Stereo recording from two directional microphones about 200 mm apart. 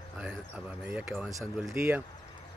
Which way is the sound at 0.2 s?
5° right (ahead or behind).